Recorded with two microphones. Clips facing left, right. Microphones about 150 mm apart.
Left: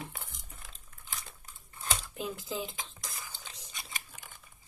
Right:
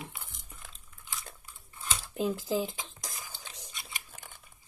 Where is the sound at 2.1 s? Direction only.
40° right (ahead or behind).